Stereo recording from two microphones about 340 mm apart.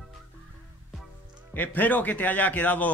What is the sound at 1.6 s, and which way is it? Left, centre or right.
A man's voice, centre.